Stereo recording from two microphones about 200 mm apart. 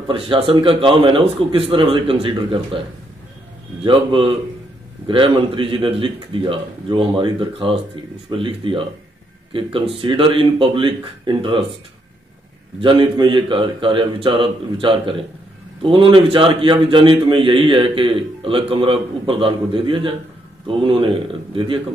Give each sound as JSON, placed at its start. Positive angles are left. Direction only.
{"t": 0.1, "sound": "a man's voice", "side_deg": -25}
{"t": 3.8, "sound": "a man's voice", "side_deg": -25}
{"t": 12.8, "sound": "a man's voice", "side_deg": -25}